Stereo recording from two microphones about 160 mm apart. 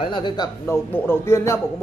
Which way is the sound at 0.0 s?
30° left (ahead or behind).